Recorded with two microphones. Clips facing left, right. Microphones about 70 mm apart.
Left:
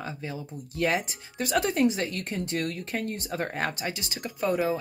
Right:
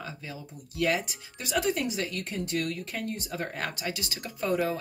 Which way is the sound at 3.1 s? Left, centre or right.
Left.